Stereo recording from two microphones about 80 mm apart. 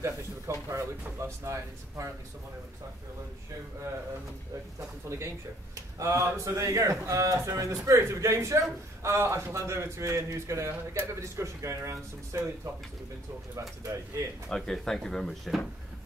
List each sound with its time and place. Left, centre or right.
0.0 s a man's voice: right
5.9 s a man's voice: right
13.6 s a man's voice: right
14.5 s speech: centre